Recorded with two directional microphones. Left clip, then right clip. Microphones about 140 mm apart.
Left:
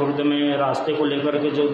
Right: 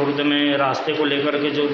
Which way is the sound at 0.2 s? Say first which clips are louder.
Right 3 dB; 15° left (ahead or behind).